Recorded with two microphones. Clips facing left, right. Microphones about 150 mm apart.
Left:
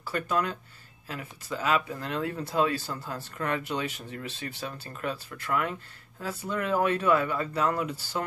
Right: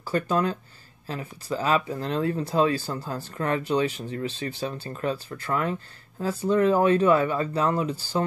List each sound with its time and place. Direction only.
0.0 s speech: 30° right (ahead or behind)